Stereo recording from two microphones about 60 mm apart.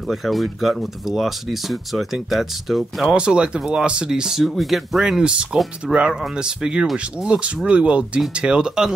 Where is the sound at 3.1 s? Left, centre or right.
Centre.